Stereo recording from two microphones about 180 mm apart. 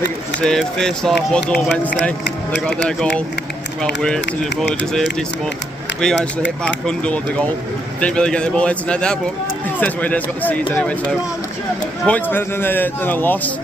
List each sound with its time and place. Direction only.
0.4 s speech: 5° left (ahead or behind)
5.9 s a man's voice: 5° left (ahead or behind)